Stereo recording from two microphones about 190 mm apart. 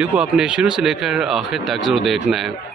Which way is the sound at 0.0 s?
5° right (ahead or behind).